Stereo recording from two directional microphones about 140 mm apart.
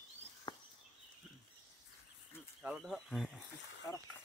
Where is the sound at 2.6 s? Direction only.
5° right (ahead or behind).